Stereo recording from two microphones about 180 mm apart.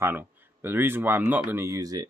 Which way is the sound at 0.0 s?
10° right (ahead or behind).